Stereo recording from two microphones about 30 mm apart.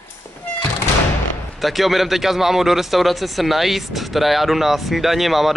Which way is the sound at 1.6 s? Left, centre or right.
Centre.